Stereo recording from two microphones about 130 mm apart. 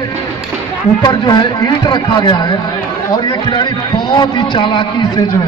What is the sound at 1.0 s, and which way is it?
A man's voice, 35° left (ahead or behind).